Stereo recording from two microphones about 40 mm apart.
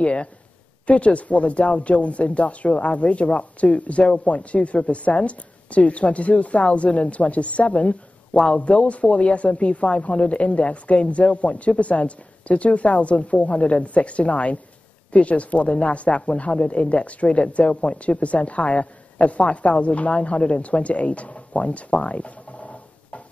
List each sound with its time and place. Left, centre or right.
0.0 s a woman's voice: left